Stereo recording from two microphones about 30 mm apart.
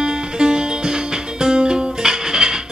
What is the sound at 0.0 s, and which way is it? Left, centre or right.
Music, right.